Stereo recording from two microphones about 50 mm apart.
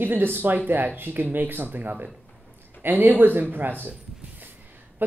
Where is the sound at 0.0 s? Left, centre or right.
Right.